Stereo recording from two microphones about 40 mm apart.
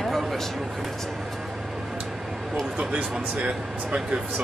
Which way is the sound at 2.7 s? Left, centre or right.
Right.